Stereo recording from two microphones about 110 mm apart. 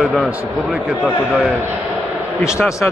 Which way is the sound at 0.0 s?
Centre (ahead or behind).